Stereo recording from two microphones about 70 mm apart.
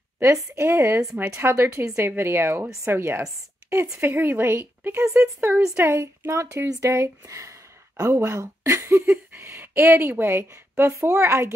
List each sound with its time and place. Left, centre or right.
0.2 s a woman's voice: right